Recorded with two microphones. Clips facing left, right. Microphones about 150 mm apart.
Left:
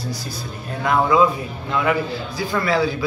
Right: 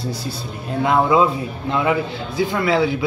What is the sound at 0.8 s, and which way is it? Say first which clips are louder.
Speech: right 1 dB; 25° right (ahead or behind).